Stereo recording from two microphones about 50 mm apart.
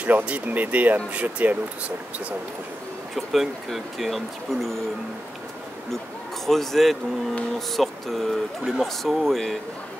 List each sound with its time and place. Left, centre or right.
0.0 s speech: right
3.2 s speech: centre
6.4 s speech: centre